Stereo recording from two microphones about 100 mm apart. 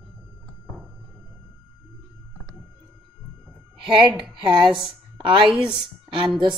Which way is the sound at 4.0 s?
50° right (ahead or behind).